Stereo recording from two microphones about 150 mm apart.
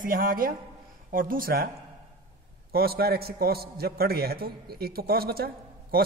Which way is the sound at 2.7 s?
90° right.